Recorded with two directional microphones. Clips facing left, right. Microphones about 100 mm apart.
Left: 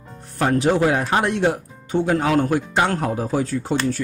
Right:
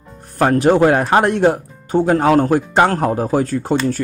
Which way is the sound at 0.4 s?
50° right (ahead or behind).